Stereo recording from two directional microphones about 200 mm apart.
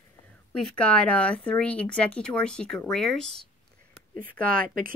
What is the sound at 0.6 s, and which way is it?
Speech, 5° left (ahead or behind).